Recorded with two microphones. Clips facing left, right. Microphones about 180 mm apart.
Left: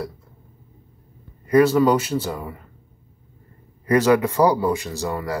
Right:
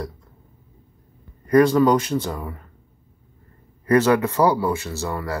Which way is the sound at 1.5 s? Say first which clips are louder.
Even; 5° left (ahead or behind).